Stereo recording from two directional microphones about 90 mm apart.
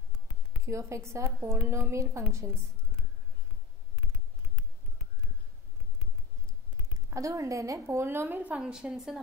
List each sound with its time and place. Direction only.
0.7 s a woman's voice: 35° right (ahead or behind)
7.1 s a woman's voice: 35° right (ahead or behind)
7.8 s a woman's voice: 25° right (ahead or behind); by 9.2 s 5° right (ahead or behind)